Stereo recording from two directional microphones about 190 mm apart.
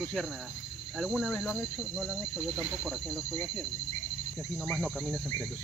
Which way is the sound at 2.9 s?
Centre (ahead or behind).